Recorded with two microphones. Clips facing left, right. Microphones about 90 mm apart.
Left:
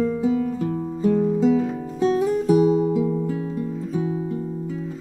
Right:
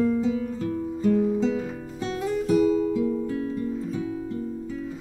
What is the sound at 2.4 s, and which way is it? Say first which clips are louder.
Music: left 1 dB; 10° left (ahead or behind).